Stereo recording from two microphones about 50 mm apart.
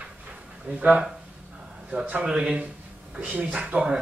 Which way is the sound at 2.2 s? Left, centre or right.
Right.